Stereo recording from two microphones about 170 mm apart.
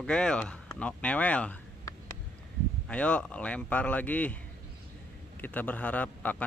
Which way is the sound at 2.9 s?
5° left (ahead or behind).